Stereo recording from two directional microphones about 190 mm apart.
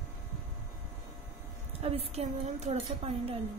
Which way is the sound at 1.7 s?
30° right (ahead or behind).